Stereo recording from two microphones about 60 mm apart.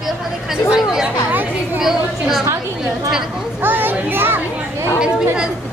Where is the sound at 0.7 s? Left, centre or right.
Centre.